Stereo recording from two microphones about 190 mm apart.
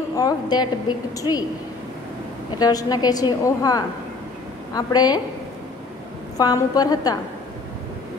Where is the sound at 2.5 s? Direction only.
20° left (ahead or behind).